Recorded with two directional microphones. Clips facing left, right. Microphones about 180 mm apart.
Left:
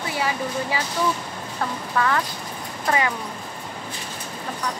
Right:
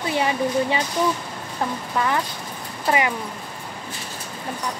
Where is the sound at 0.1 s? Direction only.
25° right (ahead or behind).